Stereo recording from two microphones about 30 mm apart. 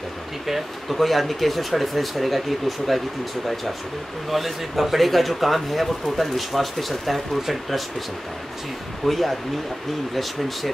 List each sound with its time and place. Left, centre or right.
0.5 s speech: centre
4.3 s speech: centre
9.0 s speech: centre